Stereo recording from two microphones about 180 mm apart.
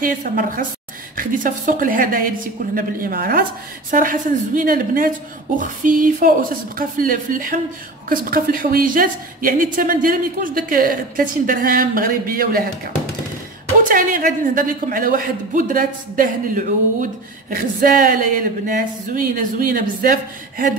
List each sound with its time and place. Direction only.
0.0 s a man's voice: 50° right (ahead or behind)